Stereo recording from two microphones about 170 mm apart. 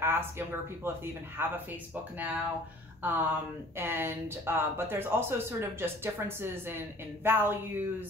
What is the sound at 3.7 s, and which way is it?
Speech, 15° right (ahead or behind).